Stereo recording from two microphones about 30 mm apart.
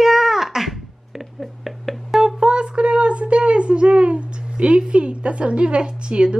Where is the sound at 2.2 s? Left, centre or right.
Right.